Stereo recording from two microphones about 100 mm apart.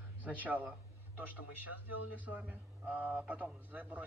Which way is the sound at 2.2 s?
15° right (ahead or behind).